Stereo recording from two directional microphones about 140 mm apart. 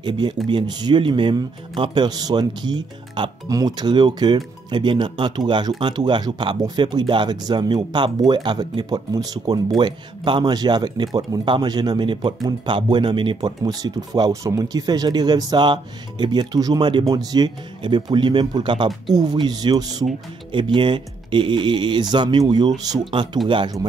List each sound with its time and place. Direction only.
0.0 s speech: 35° right (ahead or behind)